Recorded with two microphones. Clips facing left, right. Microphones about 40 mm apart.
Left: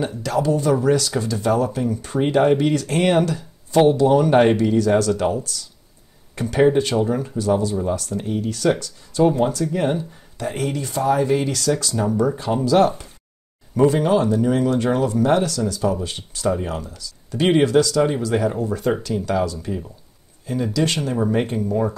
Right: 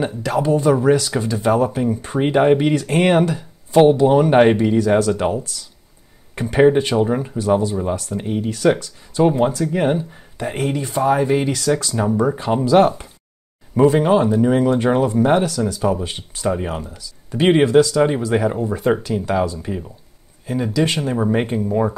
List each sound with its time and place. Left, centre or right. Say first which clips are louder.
0.0 s speech: right 2 dB; right